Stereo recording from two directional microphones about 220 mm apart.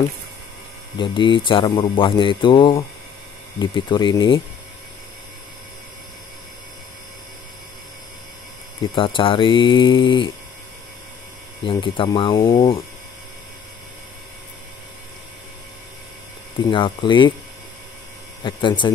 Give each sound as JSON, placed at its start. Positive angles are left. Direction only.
{"t": 0.9, "sound": "speech", "side_deg": 20}
{"t": 8.9, "sound": "speech", "side_deg": 25}
{"t": 11.6, "sound": "speech", "side_deg": 20}
{"t": 16.7, "sound": "speech", "side_deg": 20}
{"t": 18.4, "sound": "speech", "side_deg": 20}